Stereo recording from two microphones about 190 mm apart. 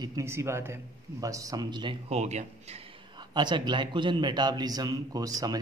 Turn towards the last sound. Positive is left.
turn(degrees=-20)  # may be behind; listen again after turning